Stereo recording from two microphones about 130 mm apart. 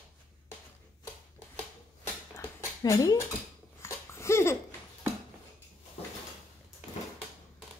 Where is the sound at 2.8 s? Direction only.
30° left (ahead or behind).